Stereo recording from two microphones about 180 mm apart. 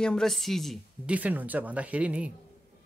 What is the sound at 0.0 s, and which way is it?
Speech, 5° left (ahead or behind).